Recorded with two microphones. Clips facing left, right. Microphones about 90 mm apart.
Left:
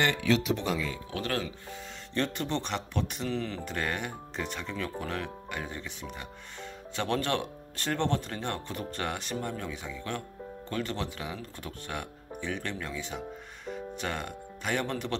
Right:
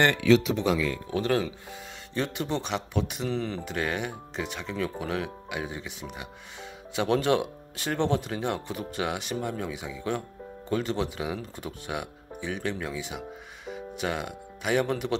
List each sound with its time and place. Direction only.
0.7 s speech: 65° right (ahead or behind)
1.1 s speech: 25° right (ahead or behind)
1.7 s speech: 10° right (ahead or behind)
3.3 s speech: 20° right (ahead or behind)
3.6 s speech: centre (ahead or behind)